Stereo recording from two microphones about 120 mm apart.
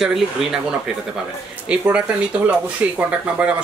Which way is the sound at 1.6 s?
10° right (ahead or behind).